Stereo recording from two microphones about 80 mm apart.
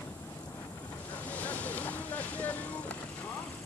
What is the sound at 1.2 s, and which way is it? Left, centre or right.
Vehicle, centre.